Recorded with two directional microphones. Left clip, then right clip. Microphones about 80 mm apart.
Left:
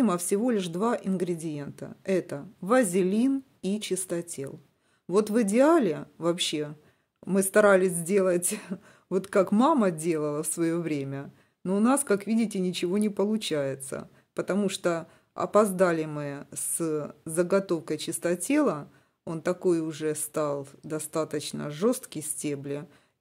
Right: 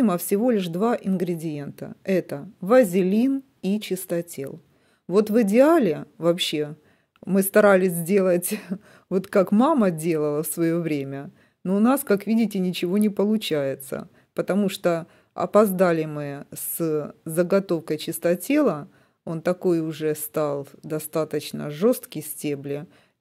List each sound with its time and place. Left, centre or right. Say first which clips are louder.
0.0 s speech: right 4 dB; right
5.1 s speech: right 5 dB; right